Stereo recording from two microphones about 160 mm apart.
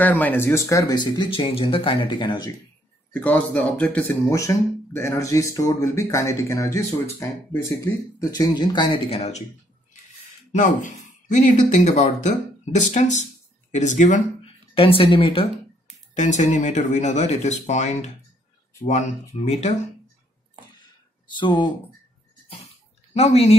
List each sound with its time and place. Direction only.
0.0 s speech: 10° left (ahead or behind)
3.1 s a man's voice: 10° left (ahead or behind)
4.3 s speech: 20° left (ahead or behind); by 9.4 s 40° left (ahead or behind)
10.5 s speech: 50° left (ahead or behind); by 15.4 s 35° left (ahead or behind)
16.2 s speech: 50° left (ahead or behind)
21.4 s speech: 30° left (ahead or behind)
23.1 s a woman's voice: 40° left (ahead or behind)